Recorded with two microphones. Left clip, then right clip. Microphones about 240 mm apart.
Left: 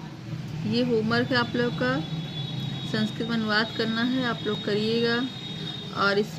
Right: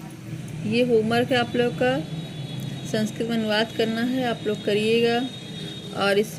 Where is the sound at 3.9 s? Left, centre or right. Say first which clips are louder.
Right 2 dB; centre.